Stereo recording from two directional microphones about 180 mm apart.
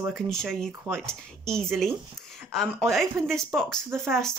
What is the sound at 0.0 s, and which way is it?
Speech, centre (ahead or behind).